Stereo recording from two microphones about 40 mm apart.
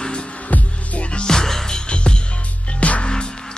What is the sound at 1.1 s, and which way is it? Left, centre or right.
Music, centre.